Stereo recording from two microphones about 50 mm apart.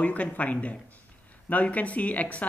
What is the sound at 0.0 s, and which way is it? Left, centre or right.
Speech, left.